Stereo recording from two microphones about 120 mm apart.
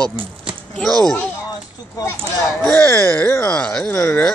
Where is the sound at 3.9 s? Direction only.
20° left (ahead or behind).